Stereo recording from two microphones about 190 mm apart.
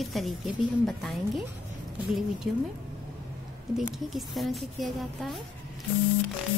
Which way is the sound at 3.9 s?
Centre (ahead or behind).